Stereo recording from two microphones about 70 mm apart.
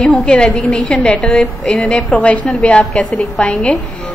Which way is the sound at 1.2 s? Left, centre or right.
Centre.